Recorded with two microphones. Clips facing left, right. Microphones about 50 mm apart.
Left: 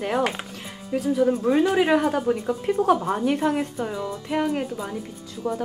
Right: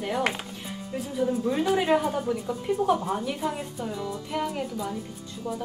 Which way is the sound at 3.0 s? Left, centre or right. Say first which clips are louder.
Left 6 dB; left.